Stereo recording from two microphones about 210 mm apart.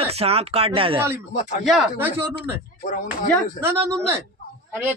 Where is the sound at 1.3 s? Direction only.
35° left (ahead or behind).